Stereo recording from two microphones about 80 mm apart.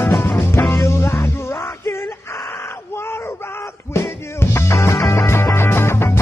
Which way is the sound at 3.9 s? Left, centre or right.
Left.